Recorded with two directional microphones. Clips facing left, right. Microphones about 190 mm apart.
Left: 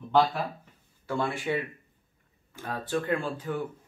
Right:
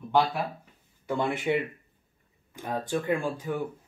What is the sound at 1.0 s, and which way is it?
Speech, 20° right (ahead or behind).